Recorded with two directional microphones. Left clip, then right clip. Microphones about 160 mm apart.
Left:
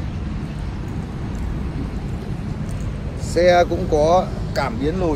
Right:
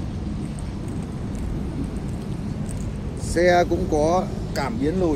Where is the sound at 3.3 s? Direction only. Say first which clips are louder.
Left 3 dB; 15° left (ahead or behind).